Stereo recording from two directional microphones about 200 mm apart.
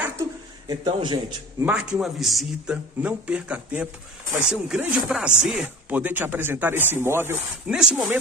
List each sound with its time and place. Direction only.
0.7 s a man's voice: 25° right (ahead or behind)
1.6 s a man's voice: 5° right (ahead or behind)